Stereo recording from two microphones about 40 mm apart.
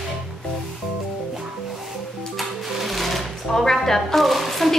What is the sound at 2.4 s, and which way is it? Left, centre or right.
A woman's voice, centre.